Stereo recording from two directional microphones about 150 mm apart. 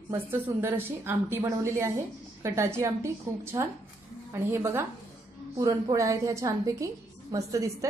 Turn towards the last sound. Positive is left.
turn(degrees=-20)  # may be behind; listen again after turning